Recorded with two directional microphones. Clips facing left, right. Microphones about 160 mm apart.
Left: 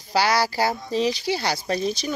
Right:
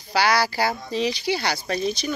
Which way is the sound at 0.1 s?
35° left (ahead or behind).